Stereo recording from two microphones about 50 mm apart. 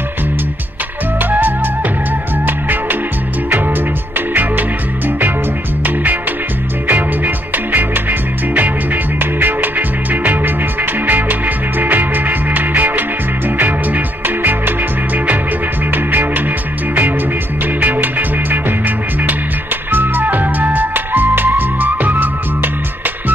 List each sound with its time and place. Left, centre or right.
2.4 s music: right
4.4 s music: right
6.9 s music: right
15.9 s music: right
17.7 s music: right
19.9 s music: right